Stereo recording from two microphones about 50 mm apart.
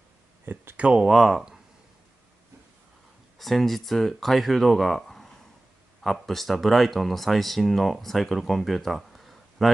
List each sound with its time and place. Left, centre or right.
0.7 s speech: right
1.0 s speech: centre
3.3 s speech: centre